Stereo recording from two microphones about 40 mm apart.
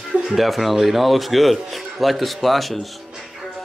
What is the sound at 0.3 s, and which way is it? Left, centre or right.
A man's voice, centre.